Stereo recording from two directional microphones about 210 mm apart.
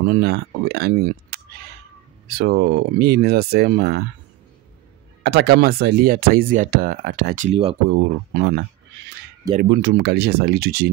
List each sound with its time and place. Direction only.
0.1 s speech: 50° right (ahead or behind)
5.2 s speech: 50° right (ahead or behind)
7.4 s speech: 25° right (ahead or behind)
7.9 s speech: 50° right (ahead or behind)